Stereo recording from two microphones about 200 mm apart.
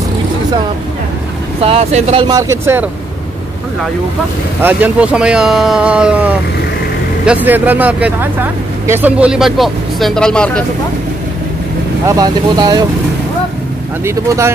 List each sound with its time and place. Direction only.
1.6 s speech: 30° right (ahead or behind)
2.2 s speech: 15° right (ahead or behind)
4.6 s speech: 10° right (ahead or behind)
12.1 s speech: 20° right (ahead or behind)
14.0 s speech: 15° right (ahead or behind)